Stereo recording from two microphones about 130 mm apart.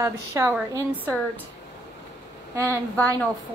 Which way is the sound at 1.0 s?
15° left (ahead or behind).